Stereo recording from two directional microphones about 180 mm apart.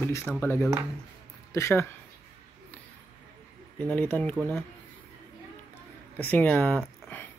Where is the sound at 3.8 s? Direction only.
10° left (ahead or behind).